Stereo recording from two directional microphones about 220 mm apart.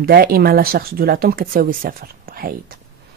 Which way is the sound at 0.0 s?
40° right (ahead or behind).